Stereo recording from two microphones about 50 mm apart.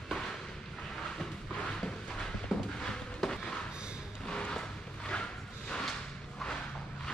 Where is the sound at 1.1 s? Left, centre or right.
Centre.